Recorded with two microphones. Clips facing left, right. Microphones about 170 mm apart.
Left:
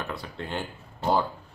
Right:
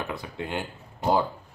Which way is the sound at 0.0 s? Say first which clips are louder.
Right 2 dB; 15° right (ahead or behind).